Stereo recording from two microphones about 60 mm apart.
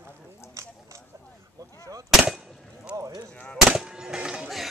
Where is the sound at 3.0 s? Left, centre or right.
Right.